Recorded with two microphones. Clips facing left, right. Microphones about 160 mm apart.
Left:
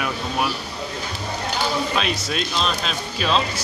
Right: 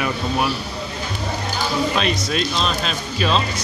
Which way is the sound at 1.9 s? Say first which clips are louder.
Right 3 dB; centre (ahead or behind).